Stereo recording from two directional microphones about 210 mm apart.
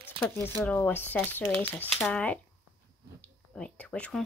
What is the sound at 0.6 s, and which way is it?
Speech, 10° left (ahead or behind).